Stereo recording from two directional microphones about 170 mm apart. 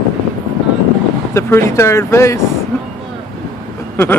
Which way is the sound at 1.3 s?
15° left (ahead or behind).